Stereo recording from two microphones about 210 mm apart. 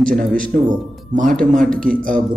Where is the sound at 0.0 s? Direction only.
40° right (ahead or behind).